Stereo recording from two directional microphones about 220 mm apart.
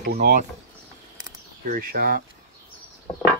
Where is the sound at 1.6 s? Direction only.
40° right (ahead or behind).